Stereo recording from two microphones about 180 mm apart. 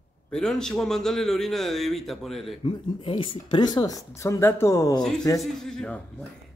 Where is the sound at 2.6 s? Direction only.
30° left (ahead or behind).